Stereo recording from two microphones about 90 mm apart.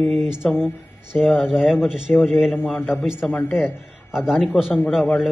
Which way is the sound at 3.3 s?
20° left (ahead or behind).